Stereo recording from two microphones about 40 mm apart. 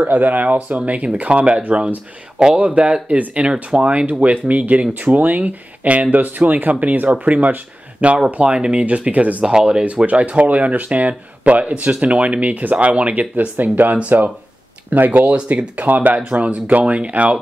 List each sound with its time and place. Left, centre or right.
0.0 s speech: right
8.3 s speech: right
9.4 s speech: right
10.0 s speech: right
14.1 s speech: right
14.9 s speech: right